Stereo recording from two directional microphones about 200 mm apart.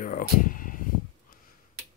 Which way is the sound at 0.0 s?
40° left (ahead or behind).